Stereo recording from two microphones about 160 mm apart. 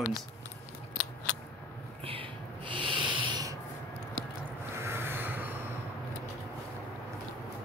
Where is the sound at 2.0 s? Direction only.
35° right (ahead or behind).